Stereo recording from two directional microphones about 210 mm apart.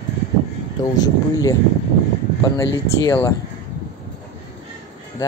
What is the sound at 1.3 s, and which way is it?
Speech, 15° left (ahead or behind).